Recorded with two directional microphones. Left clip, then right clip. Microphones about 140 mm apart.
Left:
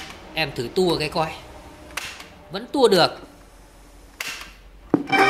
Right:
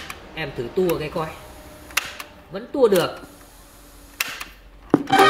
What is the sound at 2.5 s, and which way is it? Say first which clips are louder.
Speech: even; 25° left (ahead or behind).